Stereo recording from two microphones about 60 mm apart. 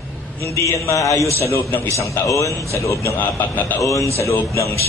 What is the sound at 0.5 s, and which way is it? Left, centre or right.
A man's voice, left.